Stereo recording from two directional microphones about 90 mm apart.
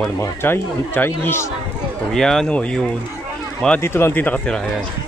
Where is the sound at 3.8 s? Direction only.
25° left (ahead or behind).